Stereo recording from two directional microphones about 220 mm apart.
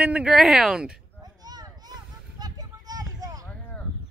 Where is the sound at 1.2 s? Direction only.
15° right (ahead or behind).